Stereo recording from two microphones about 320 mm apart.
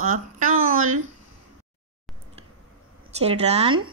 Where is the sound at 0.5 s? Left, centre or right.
Right.